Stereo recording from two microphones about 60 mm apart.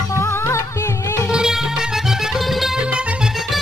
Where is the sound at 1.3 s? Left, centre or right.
Centre.